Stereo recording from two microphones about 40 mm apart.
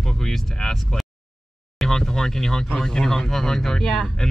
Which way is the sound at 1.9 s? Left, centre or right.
Centre.